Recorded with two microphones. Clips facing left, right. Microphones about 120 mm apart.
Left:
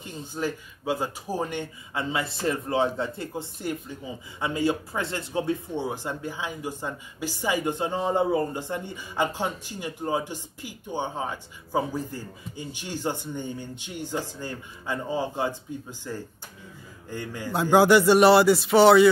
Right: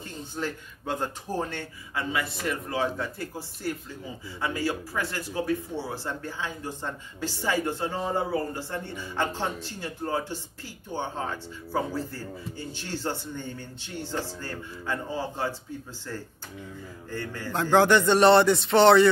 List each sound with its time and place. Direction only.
0.0 s speech: 10° left (ahead or behind)